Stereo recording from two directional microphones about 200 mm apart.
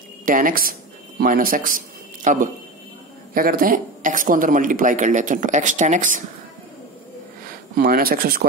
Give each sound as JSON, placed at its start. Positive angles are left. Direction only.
{"t": 0.2, "sound": "speech", "side_deg": -45}
{"t": 7.7, "sound": "speech", "side_deg": -50}